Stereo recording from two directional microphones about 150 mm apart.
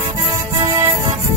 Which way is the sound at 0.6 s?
20° right (ahead or behind).